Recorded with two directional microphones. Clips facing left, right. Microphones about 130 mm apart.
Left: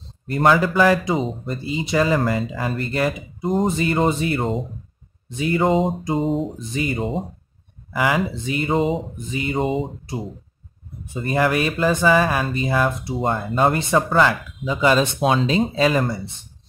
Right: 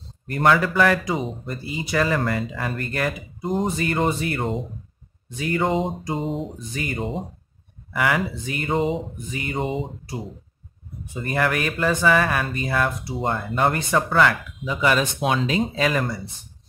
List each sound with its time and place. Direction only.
0.3 s speech: 25° left (ahead or behind)
6.2 s speech: centre (ahead or behind)
6.7 s speech: 20° left (ahead or behind)